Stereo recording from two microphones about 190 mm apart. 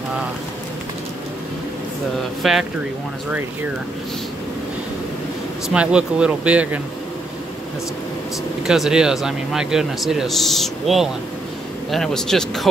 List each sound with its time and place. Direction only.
2.4 s speech: centre (ahead or behind)
5.7 s speech: 5° right (ahead or behind)
8.6 s speech: centre (ahead or behind)